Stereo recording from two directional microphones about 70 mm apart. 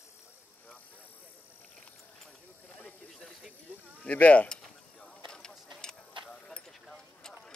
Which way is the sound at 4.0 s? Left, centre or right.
Centre.